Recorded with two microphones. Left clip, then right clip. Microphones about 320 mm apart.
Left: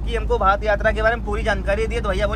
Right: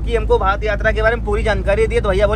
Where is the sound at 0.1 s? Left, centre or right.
Centre.